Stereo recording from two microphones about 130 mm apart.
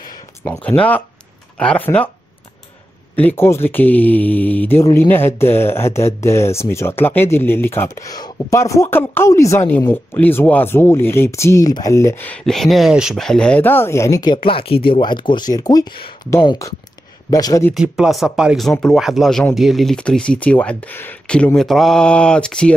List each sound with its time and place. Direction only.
0.7 s speech: 10° left (ahead or behind)
3.2 s speech: 15° left (ahead or behind)
12.3 s speech: 5° left (ahead or behind); by 14.3 s 25° left (ahead or behind)
14.3 s speech: 45° left (ahead or behind)
17.3 s speech: 30° left (ahead or behind)
17.7 s speech: 5° right (ahead or behind)